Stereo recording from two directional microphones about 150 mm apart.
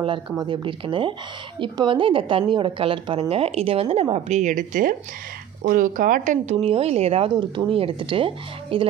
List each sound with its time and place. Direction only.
0.0 s speech: 30° right (ahead or behind)